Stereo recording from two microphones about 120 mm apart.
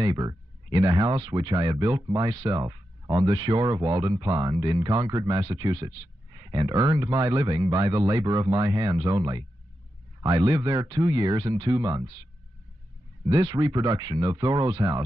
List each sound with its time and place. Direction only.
0.0 s speech: 35° right (ahead or behind)
13.3 s speech: 35° right (ahead or behind)